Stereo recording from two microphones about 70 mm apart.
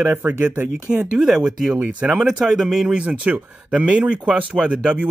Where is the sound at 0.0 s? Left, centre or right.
Right.